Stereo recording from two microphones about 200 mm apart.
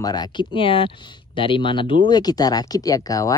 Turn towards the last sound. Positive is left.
turn(degrees=15)  # may be behind; listen again after turning